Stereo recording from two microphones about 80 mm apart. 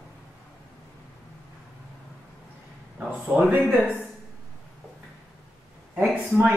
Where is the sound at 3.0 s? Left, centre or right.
Centre.